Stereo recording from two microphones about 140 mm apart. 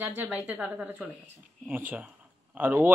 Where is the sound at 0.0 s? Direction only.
15° right (ahead or behind).